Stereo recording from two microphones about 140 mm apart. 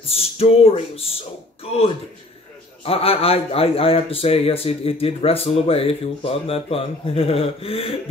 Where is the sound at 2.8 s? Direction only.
45° left (ahead or behind).